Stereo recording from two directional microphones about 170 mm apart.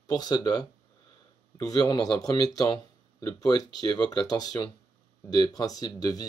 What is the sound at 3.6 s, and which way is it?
Speech, 20° left (ahead or behind).